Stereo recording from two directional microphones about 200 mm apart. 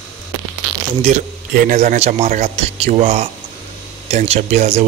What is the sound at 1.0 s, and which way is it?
A man's voice, 35° right (ahead or behind).